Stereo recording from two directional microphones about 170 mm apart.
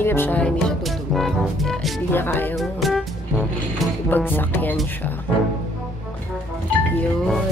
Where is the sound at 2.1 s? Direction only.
10° left (ahead or behind).